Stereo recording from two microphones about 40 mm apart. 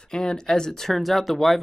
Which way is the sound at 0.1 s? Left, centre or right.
Centre.